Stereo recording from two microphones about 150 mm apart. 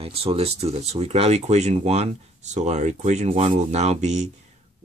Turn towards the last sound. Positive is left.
turn(degrees=-50)  # may be behind; listen again after turning